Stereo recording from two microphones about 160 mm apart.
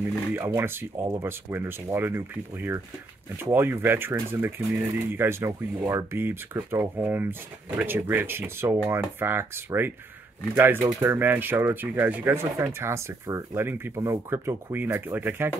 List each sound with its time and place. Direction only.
0.4 s speech: 20° right (ahead or behind)